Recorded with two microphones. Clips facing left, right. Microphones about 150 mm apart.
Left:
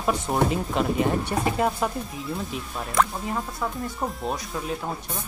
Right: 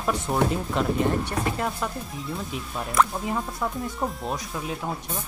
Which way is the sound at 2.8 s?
Centre (ahead or behind).